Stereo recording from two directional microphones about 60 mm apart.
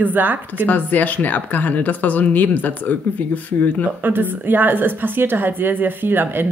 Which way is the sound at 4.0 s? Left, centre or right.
Right.